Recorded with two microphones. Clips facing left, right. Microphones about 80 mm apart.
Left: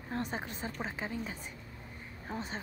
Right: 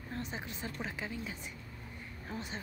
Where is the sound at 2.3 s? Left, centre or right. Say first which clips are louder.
Left 3 dB; left.